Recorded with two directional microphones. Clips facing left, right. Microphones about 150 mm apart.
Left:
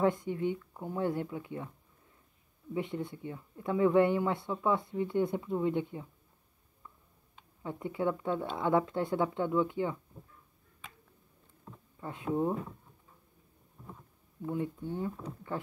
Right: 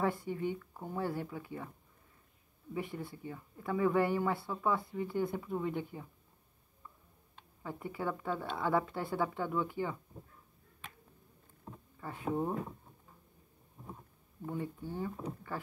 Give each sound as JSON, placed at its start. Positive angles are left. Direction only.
{"t": 0.2, "sound": "speech", "side_deg": 20}
{"t": 2.7, "sound": "speech", "side_deg": 25}
{"t": 7.6, "sound": "speech", "side_deg": 20}
{"t": 12.0, "sound": "speech", "side_deg": 20}
{"t": 14.4, "sound": "speech", "side_deg": 15}